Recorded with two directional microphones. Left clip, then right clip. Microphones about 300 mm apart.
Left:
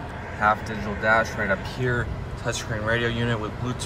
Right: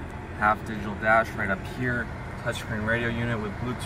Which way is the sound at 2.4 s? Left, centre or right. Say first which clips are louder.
Left 2 dB; centre.